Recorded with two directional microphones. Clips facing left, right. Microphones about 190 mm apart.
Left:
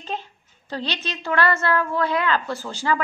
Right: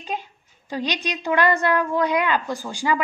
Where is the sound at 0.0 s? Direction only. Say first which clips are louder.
Right 1 dB; 10° right (ahead or behind).